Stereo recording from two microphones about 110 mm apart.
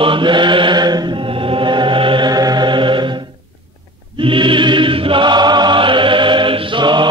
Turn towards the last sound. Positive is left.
turn(degrees=-45)  # may be behind; listen again after turning